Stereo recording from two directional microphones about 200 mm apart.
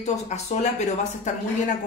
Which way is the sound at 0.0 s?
35° left (ahead or behind).